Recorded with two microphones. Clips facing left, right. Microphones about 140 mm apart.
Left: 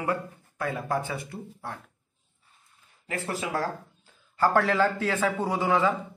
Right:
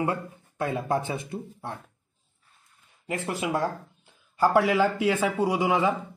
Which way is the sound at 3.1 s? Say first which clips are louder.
Right 3 dB; 20° right (ahead or behind).